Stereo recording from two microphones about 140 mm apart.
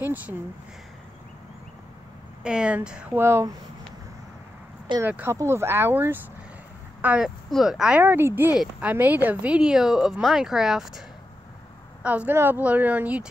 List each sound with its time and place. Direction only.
0.0 s speech: 10° right (ahead or behind)
2.4 s speech: 5° right (ahead or behind)
5.0 s speech: 15° right (ahead or behind)
7.2 s a woman's voice: centre (ahead or behind)
8.0 s a woman's voice: 15° right (ahead or behind)